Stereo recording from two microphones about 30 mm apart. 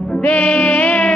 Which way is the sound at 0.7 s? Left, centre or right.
Left.